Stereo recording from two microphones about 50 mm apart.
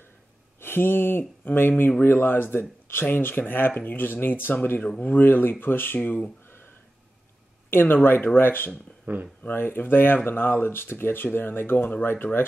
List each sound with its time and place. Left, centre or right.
0.6 s speech: left
6.4 s a sound: left
7.7 s speech: left
9.0 s speech: right
9.4 s speech: left